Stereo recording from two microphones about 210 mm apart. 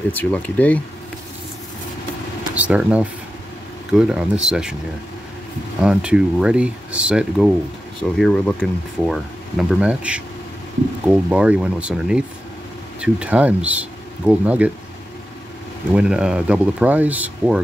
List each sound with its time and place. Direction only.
0.1 s speech: 10° left (ahead or behind)
2.5 s speech: 5° right (ahead or behind)
4.1 s speech: 5° right (ahead or behind)
5.8 s speech: 5° right (ahead or behind)
15.9 s speech: 5° right (ahead or behind)